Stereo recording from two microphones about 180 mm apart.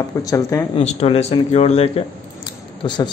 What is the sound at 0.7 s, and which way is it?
Speech, 35° left (ahead or behind).